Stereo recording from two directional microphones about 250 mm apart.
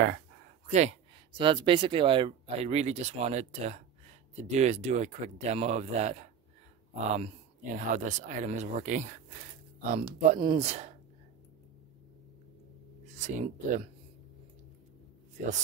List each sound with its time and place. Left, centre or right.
0.7 s speech: right
13.1 s speech: right